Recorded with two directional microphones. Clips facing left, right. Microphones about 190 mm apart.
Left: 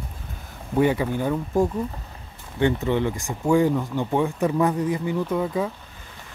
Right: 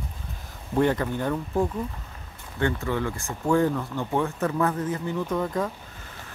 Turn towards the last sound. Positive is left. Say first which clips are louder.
# left 2 dB
turn(degrees=10)  # may be behind; listen again after turning